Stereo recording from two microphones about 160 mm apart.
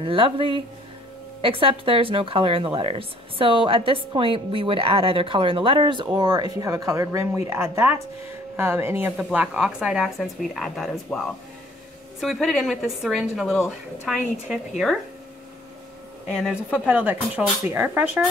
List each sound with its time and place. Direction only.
0.0 s a woman's voice: 35° right (ahead or behind); by 14.6 s 5° right (ahead or behind)
16.3 s speech: centre (ahead or behind)